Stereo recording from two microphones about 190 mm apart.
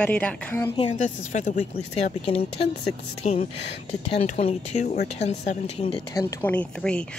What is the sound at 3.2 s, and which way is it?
Speech, 35° left (ahead or behind).